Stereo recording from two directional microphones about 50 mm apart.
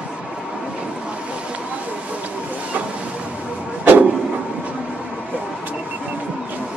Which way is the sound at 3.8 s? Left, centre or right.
Right.